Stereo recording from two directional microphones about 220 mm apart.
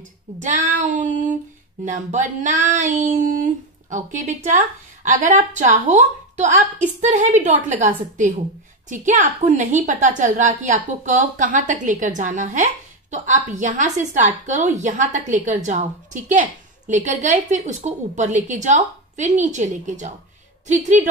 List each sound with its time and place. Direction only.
0.4 s a woman's voice: 35° right (ahead or behind)